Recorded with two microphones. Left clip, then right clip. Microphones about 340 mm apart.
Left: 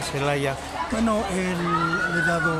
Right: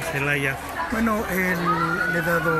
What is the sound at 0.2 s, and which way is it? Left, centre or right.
Speech, centre.